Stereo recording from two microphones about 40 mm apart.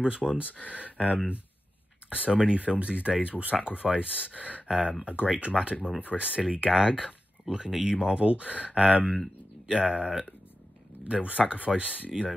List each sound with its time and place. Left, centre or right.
0.0 s speech: right
0.5 s speech: left
0.9 s speech: right
4.6 s speech: centre